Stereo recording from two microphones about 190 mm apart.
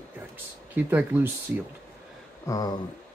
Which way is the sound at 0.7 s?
10° right (ahead or behind).